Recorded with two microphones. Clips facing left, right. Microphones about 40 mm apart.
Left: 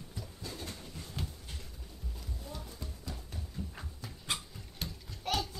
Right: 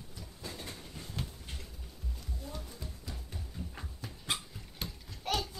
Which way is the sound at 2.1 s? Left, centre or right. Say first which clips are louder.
Right 1 dB; centre.